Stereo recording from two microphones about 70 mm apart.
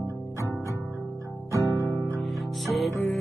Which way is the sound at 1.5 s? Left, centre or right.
Right.